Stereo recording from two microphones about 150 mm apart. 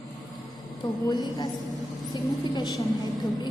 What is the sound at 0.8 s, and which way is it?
A woman's voice, 30° left (ahead or behind).